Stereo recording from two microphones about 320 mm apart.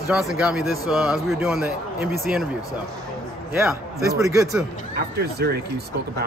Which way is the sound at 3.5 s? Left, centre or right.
Centre.